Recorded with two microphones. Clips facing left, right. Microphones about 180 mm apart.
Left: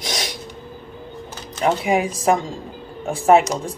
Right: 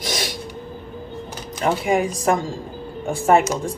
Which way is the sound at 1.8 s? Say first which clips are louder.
Even; centre (ahead or behind).